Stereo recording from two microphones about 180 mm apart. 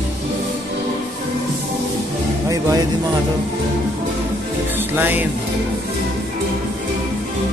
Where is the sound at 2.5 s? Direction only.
20° right (ahead or behind).